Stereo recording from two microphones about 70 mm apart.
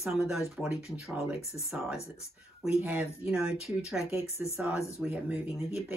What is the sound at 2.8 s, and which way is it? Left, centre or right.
Speech, right.